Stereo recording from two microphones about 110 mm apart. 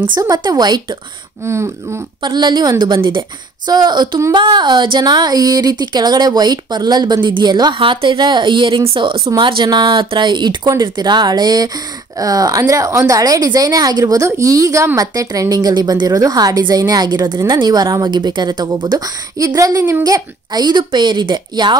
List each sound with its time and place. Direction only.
0.2 s speech: 35° right (ahead or behind)
1.4 s throat clearing: 25° right (ahead or behind)
2.2 s speech: 40° right (ahead or behind)
7.7 s speech: 50° right (ahead or behind); by 18.0 s 35° right (ahead or behind)
18.0 s speech: 45° right (ahead or behind)